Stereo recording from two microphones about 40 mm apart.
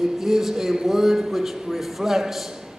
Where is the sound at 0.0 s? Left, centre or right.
Centre.